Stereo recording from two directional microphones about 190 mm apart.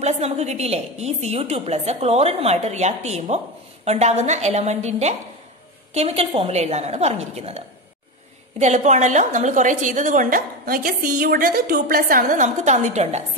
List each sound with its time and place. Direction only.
0.0 s a woman's voice: 35° right (ahead or behind)